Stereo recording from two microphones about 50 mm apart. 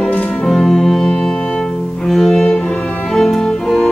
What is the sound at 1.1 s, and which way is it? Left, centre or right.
Music, centre.